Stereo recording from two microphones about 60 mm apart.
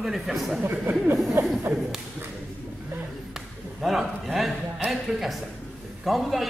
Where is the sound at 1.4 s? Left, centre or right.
Right.